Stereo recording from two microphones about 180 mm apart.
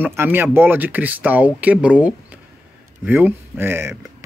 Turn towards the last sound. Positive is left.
turn(degrees=-15)  # may be behind; listen again after turning